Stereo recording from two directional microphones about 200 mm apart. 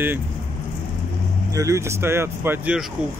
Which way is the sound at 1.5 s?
15° right (ahead or behind).